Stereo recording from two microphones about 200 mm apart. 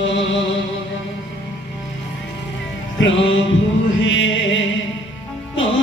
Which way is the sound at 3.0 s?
70° left (ahead or behind).